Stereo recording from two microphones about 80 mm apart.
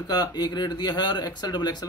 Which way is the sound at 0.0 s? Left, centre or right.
Left.